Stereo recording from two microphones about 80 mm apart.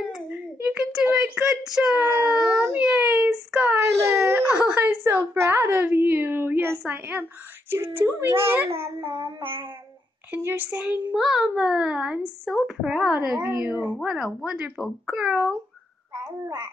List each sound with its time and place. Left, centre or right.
1.5 s a child's voice: centre
2.0 s speech: right
2.7 s a child's voice: centre
3.7 s wail: right
4.5 s a woman's voice: centre; by 9.1 s right
9.1 s a sound: right
10.3 s speech: right
11.2 s a child's voice: centre
13.4 s speech: right
14.0 s a child's voice: centre